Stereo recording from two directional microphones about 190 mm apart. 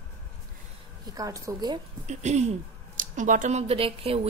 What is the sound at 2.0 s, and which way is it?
Speech, 35° right (ahead or behind).